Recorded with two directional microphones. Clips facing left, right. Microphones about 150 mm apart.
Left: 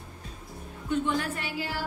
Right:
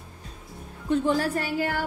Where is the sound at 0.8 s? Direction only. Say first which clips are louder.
Right 5 dB; 35° right (ahead or behind).